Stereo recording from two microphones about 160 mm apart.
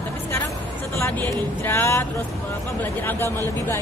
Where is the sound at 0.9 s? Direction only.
15° left (ahead or behind).